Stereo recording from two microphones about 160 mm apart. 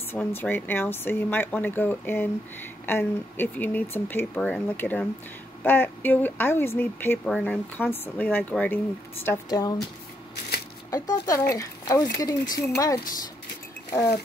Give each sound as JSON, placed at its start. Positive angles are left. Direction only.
{"t": 0.1, "sound": "speech", "side_deg": 10}
{"t": 10.9, "sound": "speech", "side_deg": 20}